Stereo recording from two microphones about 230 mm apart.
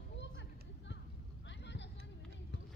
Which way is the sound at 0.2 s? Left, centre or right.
Left.